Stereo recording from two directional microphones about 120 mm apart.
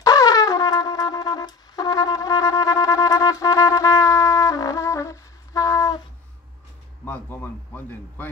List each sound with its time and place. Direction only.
0.0 s shofar: 30° left (ahead or behind)
7.1 s a man's voice: 15° left (ahead or behind)